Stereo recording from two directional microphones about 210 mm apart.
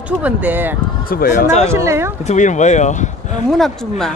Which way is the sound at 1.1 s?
45° left (ahead or behind).